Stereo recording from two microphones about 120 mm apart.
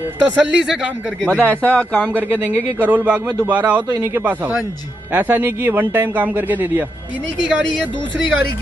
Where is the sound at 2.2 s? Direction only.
20° right (ahead or behind).